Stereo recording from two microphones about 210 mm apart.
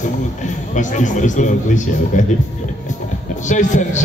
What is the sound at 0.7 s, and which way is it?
A man's voice, 35° left (ahead or behind).